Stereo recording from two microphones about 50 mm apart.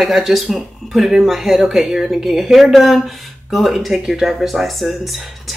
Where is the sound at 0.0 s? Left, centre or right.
Centre.